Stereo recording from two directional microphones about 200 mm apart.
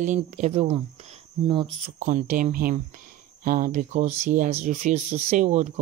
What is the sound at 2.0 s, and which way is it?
A woman's voice, 40° right (ahead or behind).